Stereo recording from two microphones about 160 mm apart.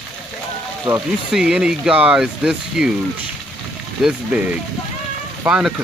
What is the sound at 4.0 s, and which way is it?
Speech, 5° right (ahead or behind).